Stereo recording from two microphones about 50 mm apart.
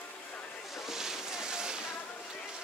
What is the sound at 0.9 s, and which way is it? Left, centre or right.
Boat, centre.